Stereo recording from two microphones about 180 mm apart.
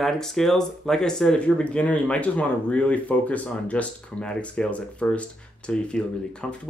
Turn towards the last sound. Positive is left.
turn(degrees=5)  # may be behind; listen again after turning